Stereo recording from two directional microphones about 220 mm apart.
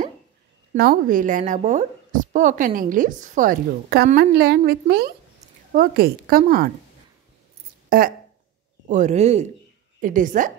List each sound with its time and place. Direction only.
0.7 s a woman's voice: 40° right (ahead or behind)
7.9 s a woman's voice: 40° right (ahead or behind)